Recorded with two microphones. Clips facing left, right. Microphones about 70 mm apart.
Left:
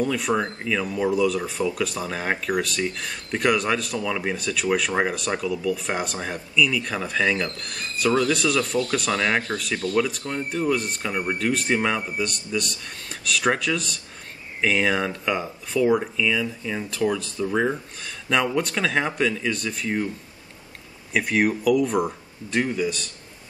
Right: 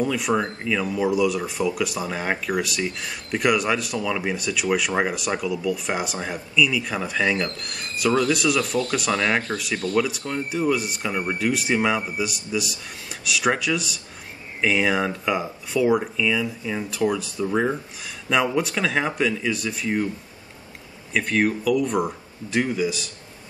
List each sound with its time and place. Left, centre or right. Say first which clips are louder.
0.0 s speech: right 1 dB; centre
21.1 s speech: even; centre